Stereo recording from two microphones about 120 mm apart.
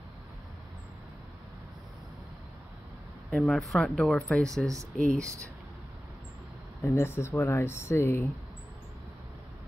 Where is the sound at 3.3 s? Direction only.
5° left (ahead or behind).